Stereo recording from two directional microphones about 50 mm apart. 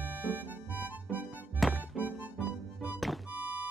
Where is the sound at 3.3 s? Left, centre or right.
Right.